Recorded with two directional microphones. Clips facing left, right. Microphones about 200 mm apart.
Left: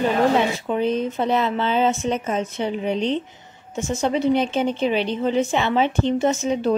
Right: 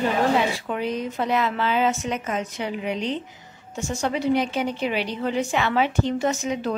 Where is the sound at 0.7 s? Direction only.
25° left (ahead or behind).